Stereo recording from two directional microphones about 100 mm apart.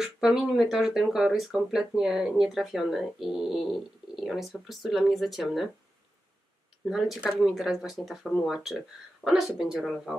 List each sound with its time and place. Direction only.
0.0 s speech: 5° right (ahead or behind)
6.9 s speech: 5° right (ahead or behind)